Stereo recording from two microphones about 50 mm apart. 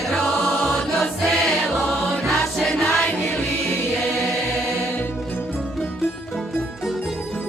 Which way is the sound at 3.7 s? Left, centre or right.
Left.